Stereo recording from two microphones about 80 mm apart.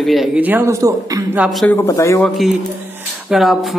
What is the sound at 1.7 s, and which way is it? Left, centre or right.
Speech, left.